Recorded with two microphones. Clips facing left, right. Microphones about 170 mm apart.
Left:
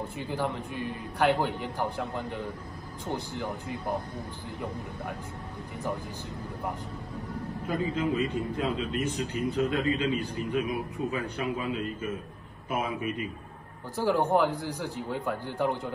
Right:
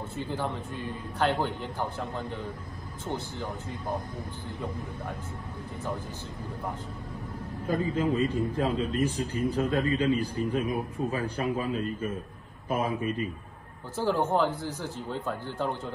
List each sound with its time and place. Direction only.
0.0 s a man's voice: 15° left (ahead or behind)
7.6 s a man's voice: 40° right (ahead or behind)
12.6 s a man's voice: 40° right (ahead or behind)
13.9 s a man's voice: 15° left (ahead or behind)